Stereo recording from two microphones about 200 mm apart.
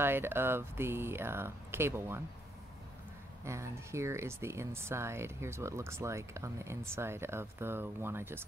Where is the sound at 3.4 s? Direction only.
15° right (ahead or behind).